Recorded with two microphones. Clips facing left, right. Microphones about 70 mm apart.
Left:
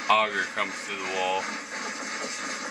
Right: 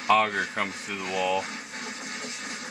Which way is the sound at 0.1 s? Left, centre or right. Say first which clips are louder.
Right 1 dB; centre.